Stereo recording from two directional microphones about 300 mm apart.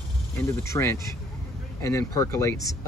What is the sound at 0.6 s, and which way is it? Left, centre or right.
Speech, centre.